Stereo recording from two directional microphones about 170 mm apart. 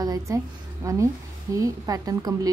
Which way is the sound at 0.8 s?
20° right (ahead or behind).